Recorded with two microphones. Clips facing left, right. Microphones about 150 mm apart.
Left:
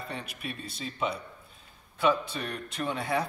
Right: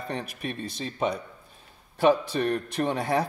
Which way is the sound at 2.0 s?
50° right (ahead or behind).